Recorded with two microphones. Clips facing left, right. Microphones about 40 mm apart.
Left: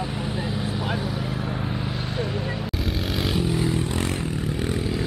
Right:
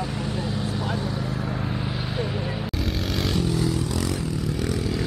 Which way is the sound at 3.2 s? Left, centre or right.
Centre.